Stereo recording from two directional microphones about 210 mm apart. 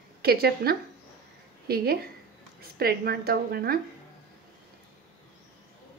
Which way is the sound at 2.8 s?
45° right (ahead or behind).